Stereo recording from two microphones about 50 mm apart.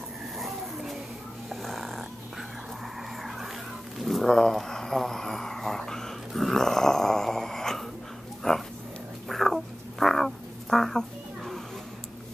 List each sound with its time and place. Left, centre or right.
0.4 s vehicle: centre
1.5 s snoring: centre
4.0 s a sound: centre
9.3 s frog: centre